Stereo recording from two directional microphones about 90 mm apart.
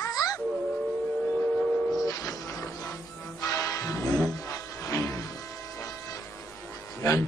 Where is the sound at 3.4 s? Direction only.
40° left (ahead or behind).